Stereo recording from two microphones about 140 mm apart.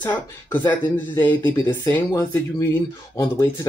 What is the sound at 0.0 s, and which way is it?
Speech, 15° left (ahead or behind).